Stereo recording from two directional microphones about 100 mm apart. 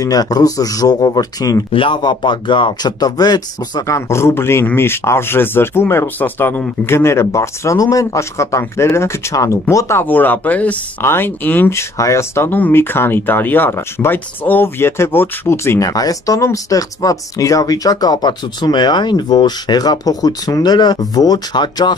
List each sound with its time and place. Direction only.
0.0 s speech: 40° left (ahead or behind)
1.7 s speech: 60° left (ahead or behind); by 11.8 s 20° left (ahead or behind)
12.0 s speech: 30° left (ahead or behind); by 21.9 s 45° left (ahead or behind)